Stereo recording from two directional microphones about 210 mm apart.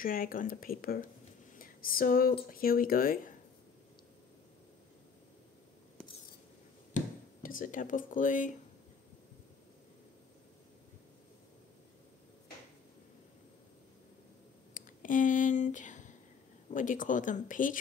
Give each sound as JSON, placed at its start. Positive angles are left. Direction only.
{"t": 0.0, "sound": "speech", "side_deg": 40}
{"t": 1.6, "sound": "a sound", "side_deg": 45}
{"t": 2.5, "sound": "speech", "side_deg": 45}
{"t": 7.4, "sound": "speech", "side_deg": 40}
{"t": 14.7, "sound": "a sound", "side_deg": 40}
{"t": 16.7, "sound": "speech", "side_deg": 40}